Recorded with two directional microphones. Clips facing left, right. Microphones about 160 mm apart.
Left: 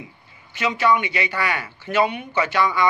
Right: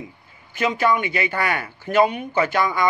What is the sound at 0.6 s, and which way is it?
Speech, 50° right (ahead or behind).